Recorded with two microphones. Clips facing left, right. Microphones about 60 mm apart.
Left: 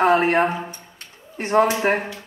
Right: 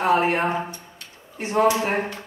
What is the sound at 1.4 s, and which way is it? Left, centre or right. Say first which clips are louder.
Speech: left 2 dB; left.